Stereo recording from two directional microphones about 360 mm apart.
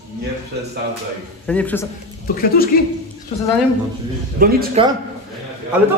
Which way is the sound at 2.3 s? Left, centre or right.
Left.